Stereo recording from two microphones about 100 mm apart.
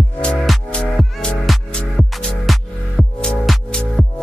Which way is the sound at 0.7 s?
10° left (ahead or behind).